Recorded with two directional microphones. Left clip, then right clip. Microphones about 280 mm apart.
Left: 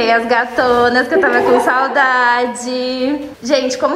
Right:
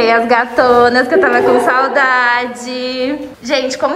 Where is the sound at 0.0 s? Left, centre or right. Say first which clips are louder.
Right 2 dB; centre.